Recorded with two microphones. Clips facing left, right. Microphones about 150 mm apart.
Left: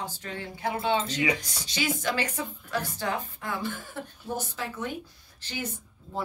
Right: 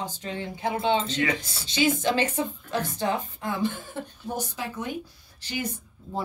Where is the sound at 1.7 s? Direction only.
25° right (ahead or behind).